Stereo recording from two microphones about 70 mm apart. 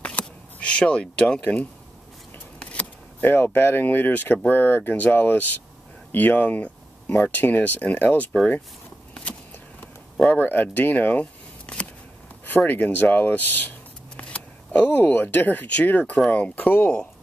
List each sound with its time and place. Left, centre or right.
0.2 s a sound: centre
0.6 s speech: centre
2.6 s speech: centre
10.3 s speech: left
12.4 s speech: left